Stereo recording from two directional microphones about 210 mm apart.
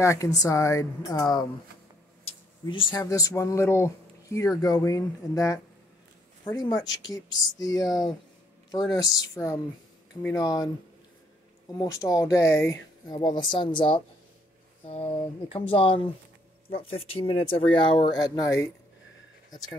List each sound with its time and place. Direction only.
0.0 s speech: 15° left (ahead or behind)
2.6 s speech: 20° left (ahead or behind)
7.8 s speech: centre (ahead or behind)
8.9 s speech: 15° left (ahead or behind)
11.7 s speech: 15° left (ahead or behind)
15.7 s speech: 25° left (ahead or behind)